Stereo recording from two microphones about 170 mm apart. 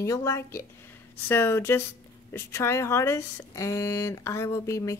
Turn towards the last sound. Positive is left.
turn(degrees=15)  # may be behind; listen again after turning